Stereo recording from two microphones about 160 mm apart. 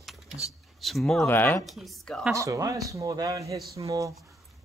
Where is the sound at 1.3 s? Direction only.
15° left (ahead or behind).